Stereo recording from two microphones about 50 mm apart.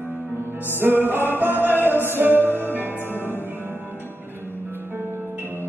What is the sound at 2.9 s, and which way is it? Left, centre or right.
Music, left.